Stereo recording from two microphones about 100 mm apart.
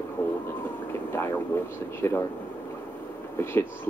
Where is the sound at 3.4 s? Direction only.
25° left (ahead or behind).